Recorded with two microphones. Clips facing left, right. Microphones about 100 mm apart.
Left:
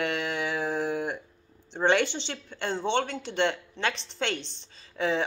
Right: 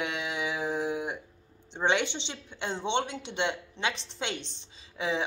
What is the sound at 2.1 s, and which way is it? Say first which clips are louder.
A woman's voice: left 3 dB; 20° right (ahead or behind).